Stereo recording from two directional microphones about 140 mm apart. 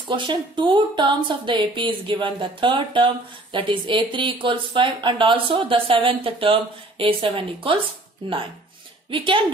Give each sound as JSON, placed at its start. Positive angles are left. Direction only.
{"t": 0.1, "sound": "speech", "side_deg": -35}
{"t": 9.1, "sound": "speech", "side_deg": -35}